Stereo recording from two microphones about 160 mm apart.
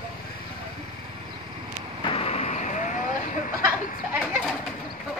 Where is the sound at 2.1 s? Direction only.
35° left (ahead or behind).